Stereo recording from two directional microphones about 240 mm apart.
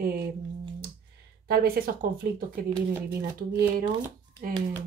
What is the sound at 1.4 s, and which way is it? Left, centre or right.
Speech, right.